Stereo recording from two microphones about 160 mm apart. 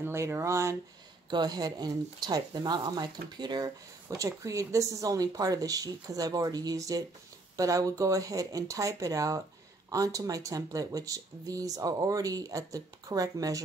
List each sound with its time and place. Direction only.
0.0 s speech: 15° right (ahead or behind)